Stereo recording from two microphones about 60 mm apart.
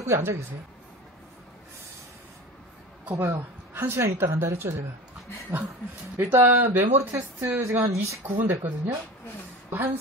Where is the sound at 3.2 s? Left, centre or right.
Right.